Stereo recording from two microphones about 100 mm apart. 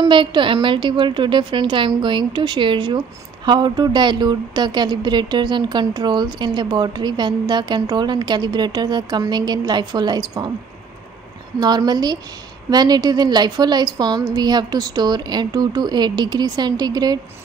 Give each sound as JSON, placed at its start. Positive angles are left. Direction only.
{"t": 0.0, "sound": "speech", "side_deg": -55}
{"t": 11.6, "sound": "speech", "side_deg": -45}